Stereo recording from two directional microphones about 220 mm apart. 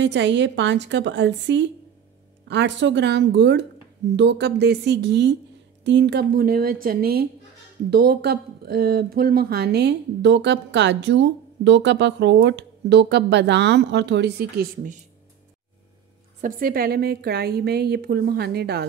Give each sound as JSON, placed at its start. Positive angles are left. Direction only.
{"t": 0.0, "sound": "speech", "side_deg": -55}
{"t": 16.3, "sound": "speech", "side_deg": -40}